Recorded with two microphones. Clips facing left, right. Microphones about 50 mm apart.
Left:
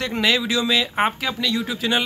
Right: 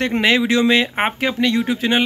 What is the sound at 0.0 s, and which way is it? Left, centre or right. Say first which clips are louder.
Speech: right 4 dB; right.